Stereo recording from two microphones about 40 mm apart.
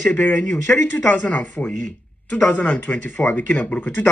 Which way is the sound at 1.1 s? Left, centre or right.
Left.